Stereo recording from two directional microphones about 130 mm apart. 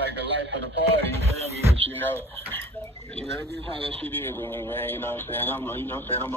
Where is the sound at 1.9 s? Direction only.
15° left (ahead or behind).